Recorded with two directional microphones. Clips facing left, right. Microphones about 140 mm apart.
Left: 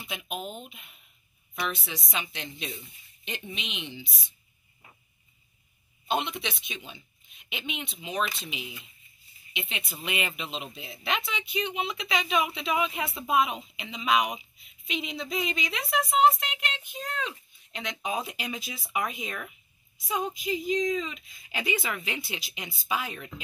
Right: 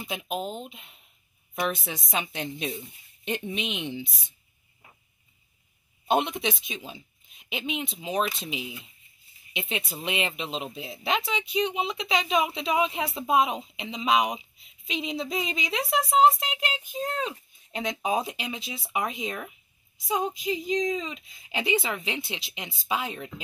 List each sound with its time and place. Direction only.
0.0 s speech: 35° right (ahead or behind)
1.5 s a woman's voice: 45° right (ahead or behind)
6.0 s a woman's voice: 45° right (ahead or behind)
9.5 s speech: 40° right (ahead or behind)
18.1 s speech: 25° right (ahead or behind)